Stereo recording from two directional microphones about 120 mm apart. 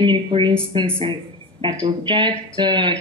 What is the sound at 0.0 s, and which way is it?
Speech, 40° right (ahead or behind).